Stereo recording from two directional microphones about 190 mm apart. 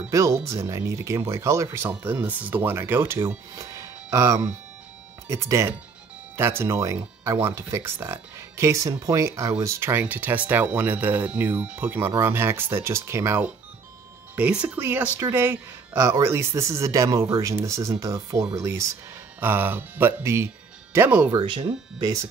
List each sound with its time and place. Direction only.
0.1 s speech: 15° right (ahead or behind)
21.3 s speech: 25° right (ahead or behind)